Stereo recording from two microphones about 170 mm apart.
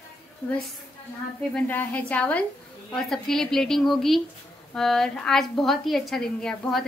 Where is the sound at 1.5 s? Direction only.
10° left (ahead or behind).